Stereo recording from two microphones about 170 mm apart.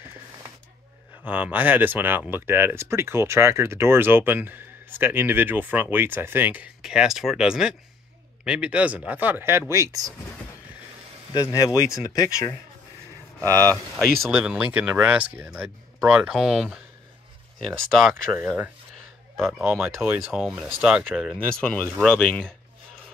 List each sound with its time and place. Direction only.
1.2 s speech: 10° right (ahead or behind)
11.3 s speech: 20° left (ahead or behind)
13.9 s speech: centre (ahead or behind)
19.6 s speech: 10° right (ahead or behind); by 22.5 s 5° left (ahead or behind)